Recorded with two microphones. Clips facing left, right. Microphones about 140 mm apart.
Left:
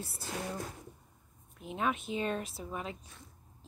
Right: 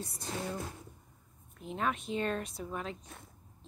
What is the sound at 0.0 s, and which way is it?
Speech, 5° left (ahead or behind).